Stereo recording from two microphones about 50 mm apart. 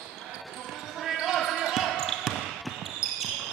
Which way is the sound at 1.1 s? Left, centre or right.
Centre.